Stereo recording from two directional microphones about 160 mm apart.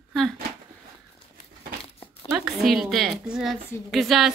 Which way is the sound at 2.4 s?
Centre (ahead or behind).